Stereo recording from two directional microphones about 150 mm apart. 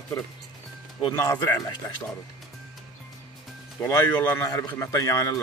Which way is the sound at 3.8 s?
15° left (ahead or behind).